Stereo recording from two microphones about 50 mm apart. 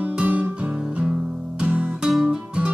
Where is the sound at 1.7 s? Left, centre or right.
Right.